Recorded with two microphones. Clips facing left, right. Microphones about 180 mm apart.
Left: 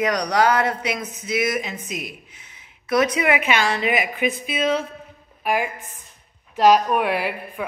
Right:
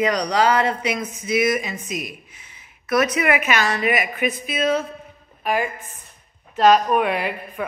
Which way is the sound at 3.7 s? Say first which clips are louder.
Right 1 dB; 20° left (ahead or behind).